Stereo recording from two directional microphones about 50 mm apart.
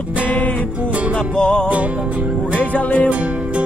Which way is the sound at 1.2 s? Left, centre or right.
Centre.